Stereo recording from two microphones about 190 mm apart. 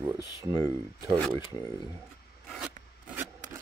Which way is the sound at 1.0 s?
5° left (ahead or behind).